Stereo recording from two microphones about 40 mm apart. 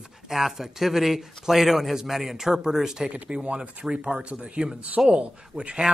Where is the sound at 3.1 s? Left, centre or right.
Right.